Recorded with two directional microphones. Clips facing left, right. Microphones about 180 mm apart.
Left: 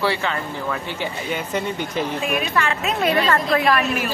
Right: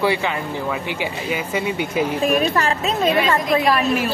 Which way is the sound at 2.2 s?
40° right (ahead or behind).